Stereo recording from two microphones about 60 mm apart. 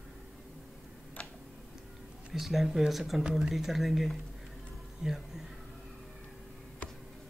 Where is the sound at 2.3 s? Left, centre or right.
Centre.